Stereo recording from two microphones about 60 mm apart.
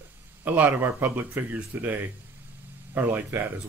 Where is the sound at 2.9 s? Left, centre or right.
Right.